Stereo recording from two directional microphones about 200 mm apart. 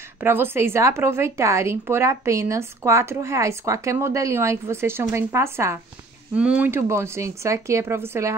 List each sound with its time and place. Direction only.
0.2 s a woman's voice: 10° right (ahead or behind)